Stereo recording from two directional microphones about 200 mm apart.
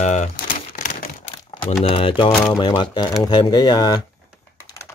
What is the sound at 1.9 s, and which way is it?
Speech, 25° left (ahead or behind).